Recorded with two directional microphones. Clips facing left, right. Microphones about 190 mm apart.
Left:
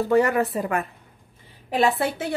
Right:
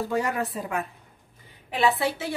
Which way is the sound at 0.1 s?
65° left (ahead or behind).